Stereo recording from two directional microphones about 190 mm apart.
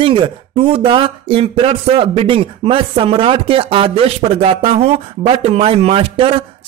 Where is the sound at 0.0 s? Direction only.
25° right (ahead or behind).